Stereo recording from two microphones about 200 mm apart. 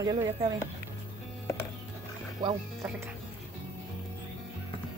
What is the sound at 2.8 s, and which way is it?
Speech, 5° right (ahead or behind).